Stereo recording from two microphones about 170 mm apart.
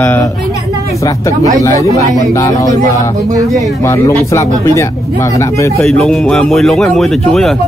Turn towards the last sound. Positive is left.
turn(degrees=0)  # may be behind; listen again after turning